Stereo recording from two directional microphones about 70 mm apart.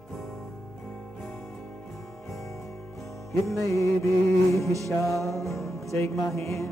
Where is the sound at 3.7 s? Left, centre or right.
Left.